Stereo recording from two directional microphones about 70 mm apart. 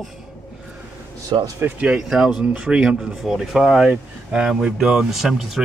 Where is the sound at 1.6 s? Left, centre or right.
Right.